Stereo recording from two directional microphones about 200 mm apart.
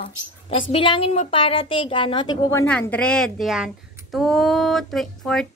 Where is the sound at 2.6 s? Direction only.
5° left (ahead or behind).